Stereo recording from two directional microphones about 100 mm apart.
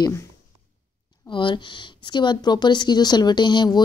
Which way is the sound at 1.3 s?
50° left (ahead or behind).